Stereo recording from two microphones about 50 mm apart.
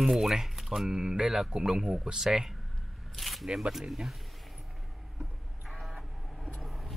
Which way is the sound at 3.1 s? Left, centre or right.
Centre.